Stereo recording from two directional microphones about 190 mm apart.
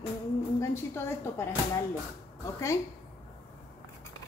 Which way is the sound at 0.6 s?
15° left (ahead or behind).